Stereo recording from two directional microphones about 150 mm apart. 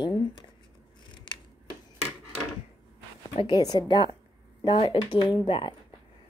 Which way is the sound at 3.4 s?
25° left (ahead or behind).